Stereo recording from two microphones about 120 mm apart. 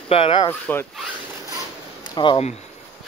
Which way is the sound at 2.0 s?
40° left (ahead or behind).